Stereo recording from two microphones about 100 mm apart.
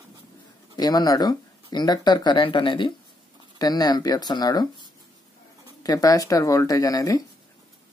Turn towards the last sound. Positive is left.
turn(degrees=35)  # may be behind; listen again after turning